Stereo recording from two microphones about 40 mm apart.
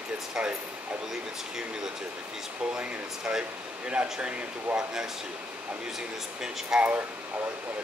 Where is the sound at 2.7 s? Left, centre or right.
Right.